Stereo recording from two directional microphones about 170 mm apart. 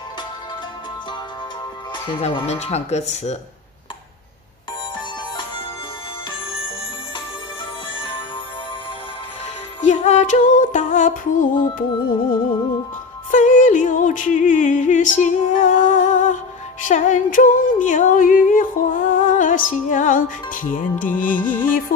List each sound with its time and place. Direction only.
2.0 s speech: 35° left (ahead or behind)
9.8 s music: 40° left (ahead or behind)
13.3 s music: 50° left (ahead or behind)